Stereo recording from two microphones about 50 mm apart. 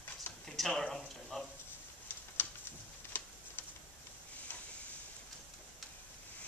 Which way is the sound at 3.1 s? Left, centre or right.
Left.